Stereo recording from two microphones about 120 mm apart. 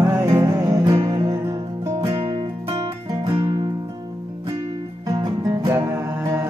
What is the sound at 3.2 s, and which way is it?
Music, 35° right (ahead or behind).